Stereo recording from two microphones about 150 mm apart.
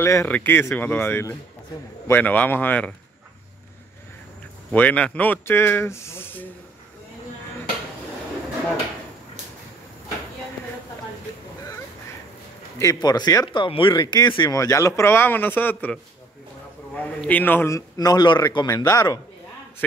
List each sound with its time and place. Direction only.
0.0 s a man's voice: 15° left (ahead or behind)
4.6 s a man's voice: 10° left (ahead or behind)
12.7 s a man's voice: 25° left (ahead or behind)